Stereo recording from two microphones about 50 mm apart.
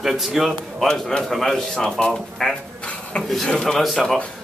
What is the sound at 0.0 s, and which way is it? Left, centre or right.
A man's voice, centre.